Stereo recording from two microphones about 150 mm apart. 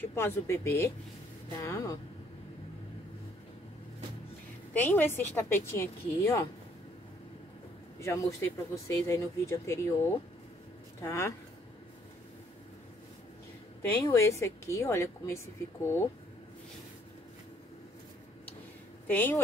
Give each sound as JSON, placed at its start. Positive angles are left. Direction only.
{"t": 0.1, "sound": "a woman's voice", "side_deg": 15}
{"t": 4.7, "sound": "speech", "side_deg": 15}
{"t": 8.0, "sound": "speech", "side_deg": 15}
{"t": 11.0, "sound": "speech", "side_deg": 20}
{"t": 14.0, "sound": "a woman's voice", "side_deg": 20}
{"t": 19.0, "sound": "speech", "side_deg": 10}